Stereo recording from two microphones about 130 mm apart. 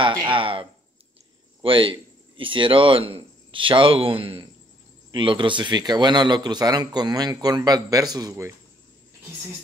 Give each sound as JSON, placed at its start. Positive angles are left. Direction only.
{"t": 0.2, "sound": "a man's voice", "side_deg": -40}